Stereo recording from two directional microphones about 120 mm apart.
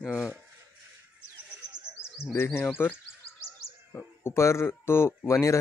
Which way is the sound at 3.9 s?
20° left (ahead or behind).